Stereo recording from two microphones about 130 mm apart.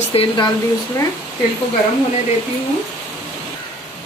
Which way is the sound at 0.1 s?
50° left (ahead or behind).